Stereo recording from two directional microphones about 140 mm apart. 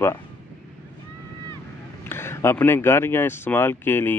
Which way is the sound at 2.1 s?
15° left (ahead or behind).